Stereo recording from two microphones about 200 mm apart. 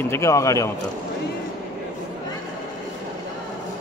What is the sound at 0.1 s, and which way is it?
Speech, 15° left (ahead or behind).